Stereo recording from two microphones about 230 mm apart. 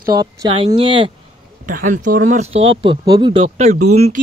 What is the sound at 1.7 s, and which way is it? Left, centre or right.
Speech, right.